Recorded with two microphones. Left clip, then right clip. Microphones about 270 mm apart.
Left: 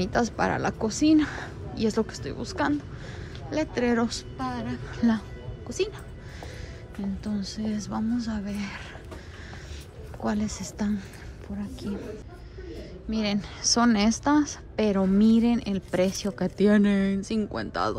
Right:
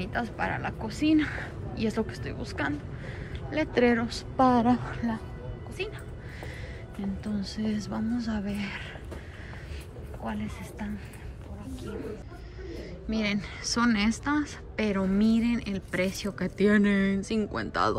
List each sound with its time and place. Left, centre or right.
0.0 s a woman's voice: centre
5.7 s a woman's voice: left
7.2 s a woman's voice: centre
10.2 s a woman's voice: centre
12.6 s a woman's voice: centre